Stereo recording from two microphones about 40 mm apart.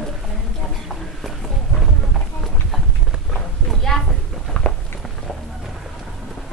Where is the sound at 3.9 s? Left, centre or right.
Centre.